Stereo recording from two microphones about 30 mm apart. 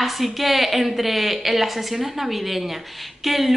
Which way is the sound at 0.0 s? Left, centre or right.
Centre.